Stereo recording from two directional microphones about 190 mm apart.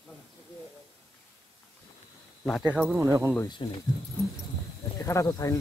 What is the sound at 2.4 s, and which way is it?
Speech, centre (ahead or behind).